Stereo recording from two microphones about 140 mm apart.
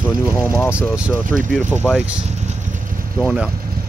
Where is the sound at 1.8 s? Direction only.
Centre (ahead or behind).